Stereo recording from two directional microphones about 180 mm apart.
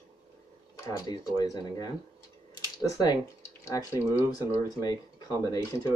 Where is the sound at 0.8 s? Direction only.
20° left (ahead or behind).